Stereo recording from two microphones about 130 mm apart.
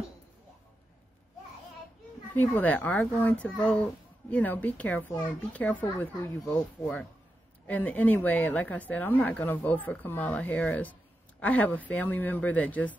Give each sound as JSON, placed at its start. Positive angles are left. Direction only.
{"t": 2.3, "sound": "a woman's voice", "side_deg": 15}